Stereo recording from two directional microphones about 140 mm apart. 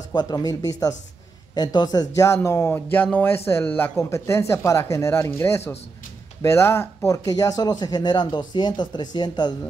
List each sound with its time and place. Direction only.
0.1 s speech: 30° left (ahead or behind)